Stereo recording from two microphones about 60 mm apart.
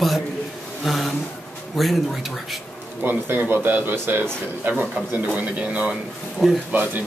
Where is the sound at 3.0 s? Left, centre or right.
Right.